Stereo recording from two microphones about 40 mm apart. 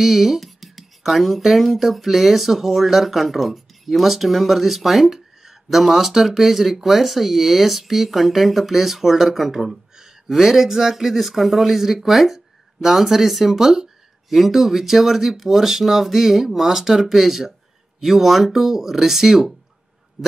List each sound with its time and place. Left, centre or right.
0.0 s speech: centre